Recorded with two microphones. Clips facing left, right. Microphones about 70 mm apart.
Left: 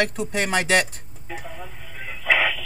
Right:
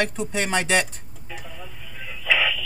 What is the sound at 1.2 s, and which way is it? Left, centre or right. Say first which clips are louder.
Radio: left 4 dB; left.